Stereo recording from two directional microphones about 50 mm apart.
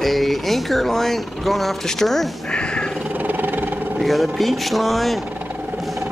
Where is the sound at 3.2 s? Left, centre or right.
Right.